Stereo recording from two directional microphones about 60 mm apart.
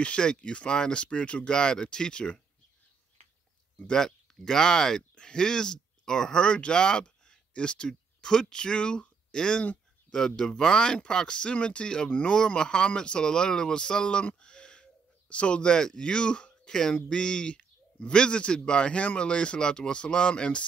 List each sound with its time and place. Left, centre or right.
0.0 s speech: centre
3.8 s a man's voice: centre